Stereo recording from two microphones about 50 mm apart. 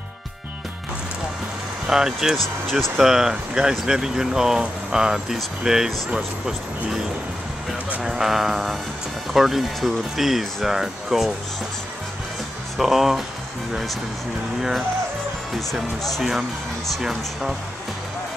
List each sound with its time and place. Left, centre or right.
1.9 s speech: centre
8.0 s speech: centre
12.7 s speech: centre
15.7 s speech: centre